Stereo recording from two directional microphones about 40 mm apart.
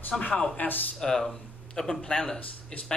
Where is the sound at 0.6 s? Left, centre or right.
Left.